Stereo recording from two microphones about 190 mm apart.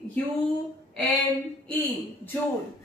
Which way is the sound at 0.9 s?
Centre (ahead or behind).